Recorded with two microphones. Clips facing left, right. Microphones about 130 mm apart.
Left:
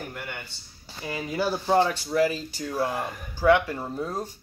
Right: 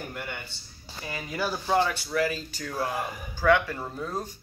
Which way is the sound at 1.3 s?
25° left (ahead or behind).